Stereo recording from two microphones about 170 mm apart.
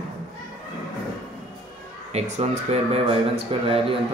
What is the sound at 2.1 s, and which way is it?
Speech, 40° right (ahead or behind).